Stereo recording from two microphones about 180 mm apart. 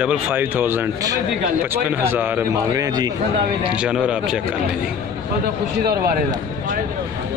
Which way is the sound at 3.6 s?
5° right (ahead or behind).